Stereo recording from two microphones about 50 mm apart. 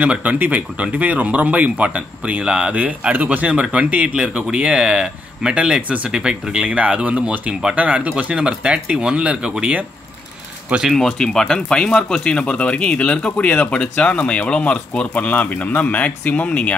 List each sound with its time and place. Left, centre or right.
0.0 s speech: right
11.0 s speech: centre